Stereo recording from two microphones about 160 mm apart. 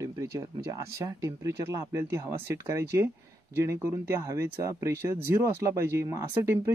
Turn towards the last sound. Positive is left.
turn(degrees=-15)  # may be behind; listen again after turning